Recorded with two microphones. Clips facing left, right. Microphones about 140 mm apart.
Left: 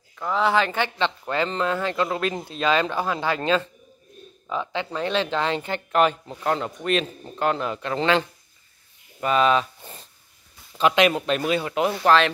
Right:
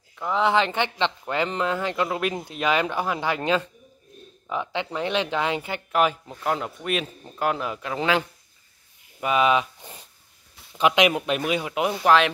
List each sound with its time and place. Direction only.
0.2 s speech: 20° right (ahead or behind)